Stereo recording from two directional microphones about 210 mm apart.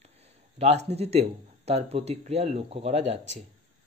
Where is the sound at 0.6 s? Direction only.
30° right (ahead or behind).